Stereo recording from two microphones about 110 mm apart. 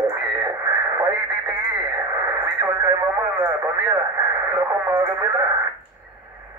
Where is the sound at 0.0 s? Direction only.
25° right (ahead or behind).